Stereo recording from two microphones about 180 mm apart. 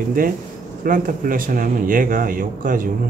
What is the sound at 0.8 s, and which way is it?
Speech, 50° right (ahead or behind).